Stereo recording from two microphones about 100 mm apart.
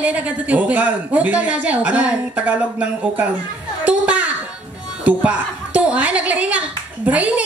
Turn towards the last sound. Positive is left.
turn(degrees=-15)  # may be behind; listen again after turning